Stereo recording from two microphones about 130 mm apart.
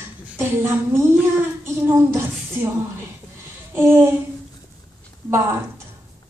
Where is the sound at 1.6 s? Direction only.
20° right (ahead or behind).